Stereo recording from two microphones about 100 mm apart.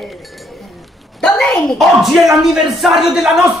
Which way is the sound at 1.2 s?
5° left (ahead or behind).